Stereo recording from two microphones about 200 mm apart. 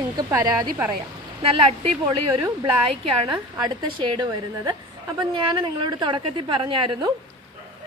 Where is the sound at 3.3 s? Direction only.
20° right (ahead or behind).